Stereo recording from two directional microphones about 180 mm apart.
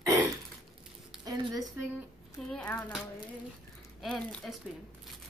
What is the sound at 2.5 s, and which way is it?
Speech, 5° left (ahead or behind).